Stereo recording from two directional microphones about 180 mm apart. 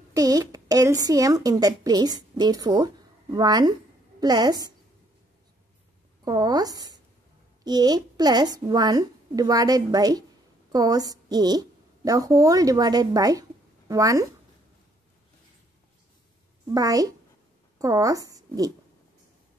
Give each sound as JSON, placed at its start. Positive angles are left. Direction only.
{"t": 0.1, "sound": "a woman's voice", "side_deg": -20}
{"t": 6.2, "sound": "a woman's voice", "side_deg": -20}
{"t": 16.6, "sound": "a woman's voice", "side_deg": -20}